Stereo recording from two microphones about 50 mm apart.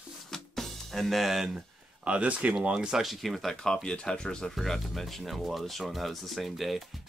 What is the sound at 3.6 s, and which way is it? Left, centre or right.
Speech, centre.